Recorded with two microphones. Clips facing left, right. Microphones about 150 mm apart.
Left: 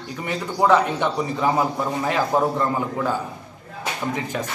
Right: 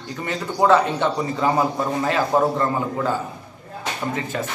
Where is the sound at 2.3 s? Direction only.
15° right (ahead or behind).